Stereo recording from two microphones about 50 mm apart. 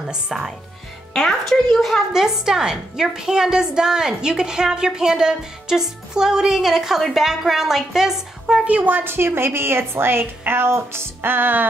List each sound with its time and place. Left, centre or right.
0.0 s a woman's voice: centre
1.1 s a woman's voice: centre
8.6 s a woman's voice: right
8.9 s a woman's voice: right